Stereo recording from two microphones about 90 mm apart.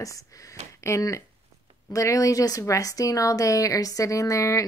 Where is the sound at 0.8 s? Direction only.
35° left (ahead or behind).